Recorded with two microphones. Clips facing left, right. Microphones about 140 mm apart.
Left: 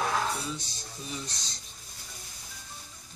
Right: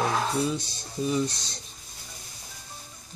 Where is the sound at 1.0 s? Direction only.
65° right (ahead or behind).